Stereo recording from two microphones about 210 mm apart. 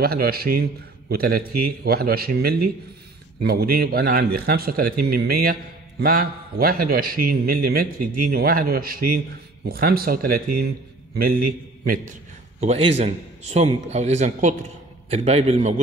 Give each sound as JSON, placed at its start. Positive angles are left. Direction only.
{"t": 0.0, "sound": "a man's voice", "side_deg": -45}